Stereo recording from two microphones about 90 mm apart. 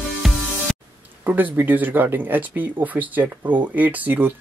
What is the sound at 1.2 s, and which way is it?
Speech, 20° right (ahead or behind).